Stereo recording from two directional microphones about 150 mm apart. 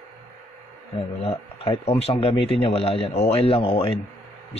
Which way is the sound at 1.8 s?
40° left (ahead or behind).